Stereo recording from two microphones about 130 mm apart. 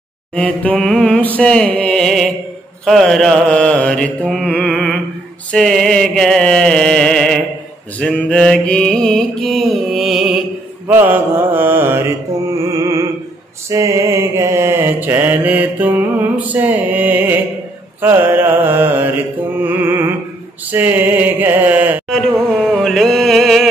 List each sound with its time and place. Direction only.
0.3 s mantra: 10° left (ahead or behind)
10.9 s mantra: 15° right (ahead or behind)
12.7 s music: 25° right (ahead or behind)
13.7 s mantra: 25° right (ahead or behind)
19.6 s music: 15° right (ahead or behind)
20.7 s mantra: 15° right (ahead or behind)
22.6 s mantra: 5° left (ahead or behind)